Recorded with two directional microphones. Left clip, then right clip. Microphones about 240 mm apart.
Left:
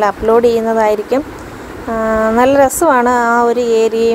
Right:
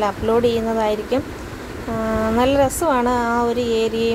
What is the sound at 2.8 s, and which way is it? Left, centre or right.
Speech, left.